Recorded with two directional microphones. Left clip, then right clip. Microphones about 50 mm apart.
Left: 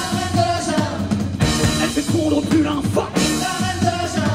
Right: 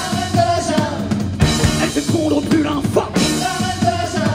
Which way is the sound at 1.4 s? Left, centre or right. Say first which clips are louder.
Right 2 dB; centre.